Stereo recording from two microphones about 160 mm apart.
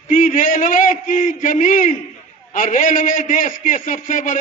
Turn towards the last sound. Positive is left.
turn(degrees=55)  # may be behind; listen again after turning